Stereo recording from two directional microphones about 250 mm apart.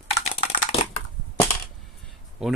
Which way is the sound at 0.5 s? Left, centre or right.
Left.